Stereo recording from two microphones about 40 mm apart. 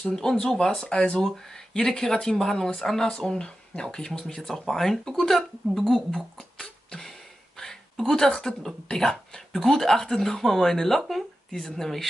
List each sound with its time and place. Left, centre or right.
0.1 s speech: centre
3.2 s speech: left
5.3 s speech: centre
6.1 s beatboxing: centre
7.6 s a sound: centre
8.8 s speech: centre